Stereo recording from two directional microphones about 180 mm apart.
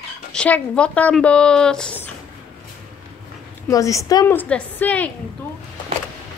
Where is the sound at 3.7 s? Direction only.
20° left (ahead or behind).